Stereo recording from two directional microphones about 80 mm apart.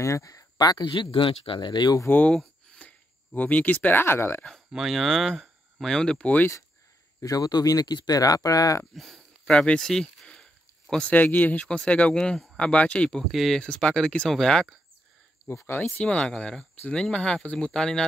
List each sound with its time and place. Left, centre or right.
0.0 s speech: left
2.0 s speech: left
4.7 s speech: centre
7.2 s speech: left
8.9 s speech: centre
9.4 s speech: centre
13.3 s speech: centre
13.6 s speech: centre
15.4 s speech: left
16.0 s speech: centre